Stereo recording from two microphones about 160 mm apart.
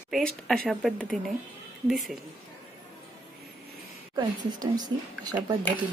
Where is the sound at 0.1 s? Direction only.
5° left (ahead or behind).